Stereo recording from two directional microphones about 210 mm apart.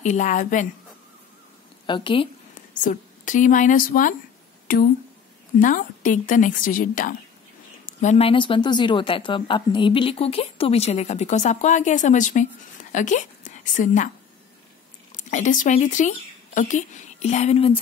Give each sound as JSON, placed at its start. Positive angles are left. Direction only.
{"t": 0.0, "sound": "a woman's voice", "side_deg": 35}
{"t": 1.9, "sound": "speech", "side_deg": 25}
{"t": 2.8, "sound": "a woman's voice", "side_deg": 35}
{"t": 15.2, "sound": "a woman's voice", "side_deg": 35}